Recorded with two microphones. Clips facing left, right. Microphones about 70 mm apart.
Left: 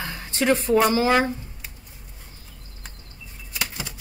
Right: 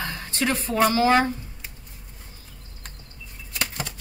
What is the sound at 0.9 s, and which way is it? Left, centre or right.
Speech, centre.